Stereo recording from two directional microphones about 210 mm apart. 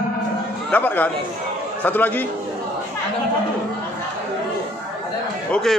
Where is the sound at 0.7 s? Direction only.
10° left (ahead or behind).